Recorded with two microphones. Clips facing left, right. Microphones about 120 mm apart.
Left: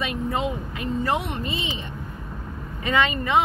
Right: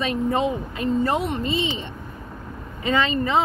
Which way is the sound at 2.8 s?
30° right (ahead or behind).